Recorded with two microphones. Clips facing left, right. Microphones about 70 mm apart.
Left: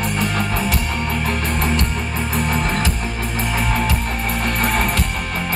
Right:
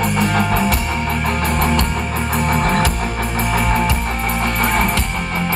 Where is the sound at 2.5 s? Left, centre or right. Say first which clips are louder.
Right 7 dB; right.